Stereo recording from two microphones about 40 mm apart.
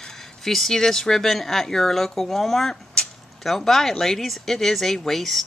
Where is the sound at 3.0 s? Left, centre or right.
Left.